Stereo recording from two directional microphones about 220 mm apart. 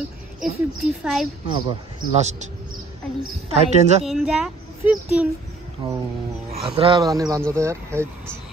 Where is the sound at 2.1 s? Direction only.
30° right (ahead or behind).